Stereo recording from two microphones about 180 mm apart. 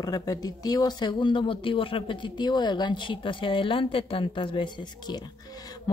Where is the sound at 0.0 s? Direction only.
20° left (ahead or behind).